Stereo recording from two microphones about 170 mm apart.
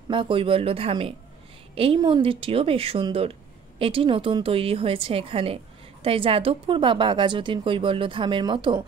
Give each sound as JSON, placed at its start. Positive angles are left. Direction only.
{"t": 0.1, "sound": "a woman's voice", "side_deg": -30}